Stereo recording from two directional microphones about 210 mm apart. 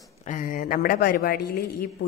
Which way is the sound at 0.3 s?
40° left (ahead or behind).